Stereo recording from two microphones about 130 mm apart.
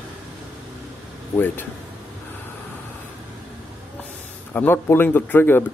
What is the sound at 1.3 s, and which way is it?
Speech, 15° left (ahead or behind).